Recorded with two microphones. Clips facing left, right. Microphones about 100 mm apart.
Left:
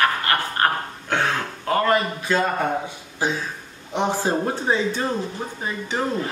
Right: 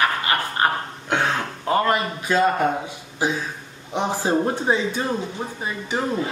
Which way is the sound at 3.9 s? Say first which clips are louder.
Right 1 dB; 15° right (ahead or behind).